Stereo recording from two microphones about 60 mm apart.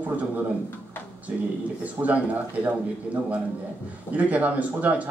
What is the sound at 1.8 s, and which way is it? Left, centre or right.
Speech, right.